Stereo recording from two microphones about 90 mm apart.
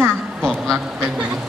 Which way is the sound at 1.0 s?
10° right (ahead or behind).